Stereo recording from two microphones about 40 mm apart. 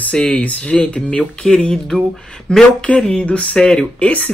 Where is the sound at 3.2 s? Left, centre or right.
Left.